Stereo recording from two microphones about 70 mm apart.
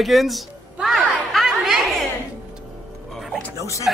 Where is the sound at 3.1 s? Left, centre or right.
Centre.